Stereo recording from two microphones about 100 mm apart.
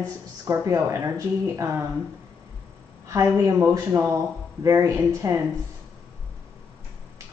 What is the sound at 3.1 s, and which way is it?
Speech, 30° right (ahead or behind).